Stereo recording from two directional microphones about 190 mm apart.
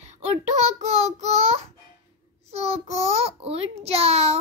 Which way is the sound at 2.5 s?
35° right (ahead or behind).